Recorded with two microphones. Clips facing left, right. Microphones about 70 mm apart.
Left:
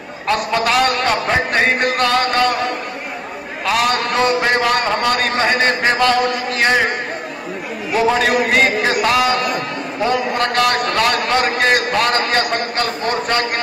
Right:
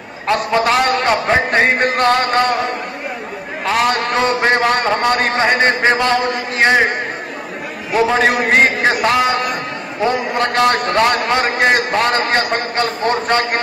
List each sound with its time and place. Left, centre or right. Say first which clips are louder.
0.3 s a man's voice: right 2 dB; right
3.6 s a man's voice: right 1 dB; right
7.9 s a man's voice: right 1 dB; right